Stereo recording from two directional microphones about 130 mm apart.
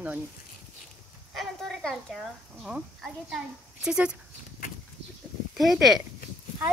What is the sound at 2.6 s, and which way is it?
A woman's voice, 5° right (ahead or behind).